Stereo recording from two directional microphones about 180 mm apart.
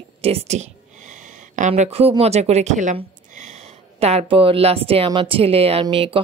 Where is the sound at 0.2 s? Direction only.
35° right (ahead or behind).